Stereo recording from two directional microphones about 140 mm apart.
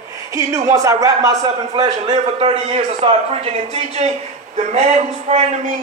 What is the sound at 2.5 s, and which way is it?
Speech, 50° right (ahead or behind).